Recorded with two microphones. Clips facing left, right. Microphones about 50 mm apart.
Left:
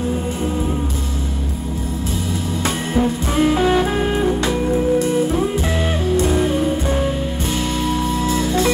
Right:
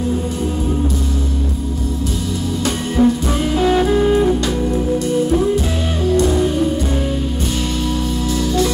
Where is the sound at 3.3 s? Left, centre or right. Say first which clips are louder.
Even; left.